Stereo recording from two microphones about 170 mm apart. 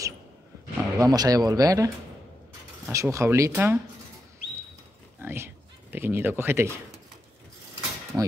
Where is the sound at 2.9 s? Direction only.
20° right (ahead or behind).